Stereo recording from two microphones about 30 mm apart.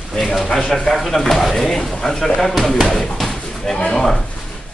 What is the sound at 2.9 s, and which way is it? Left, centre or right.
Slam, centre.